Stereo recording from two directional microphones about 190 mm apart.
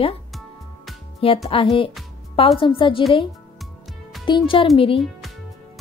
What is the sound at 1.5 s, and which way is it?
Speech, 30° left (ahead or behind).